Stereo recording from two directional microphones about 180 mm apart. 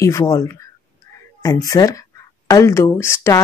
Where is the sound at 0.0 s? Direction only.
15° left (ahead or behind).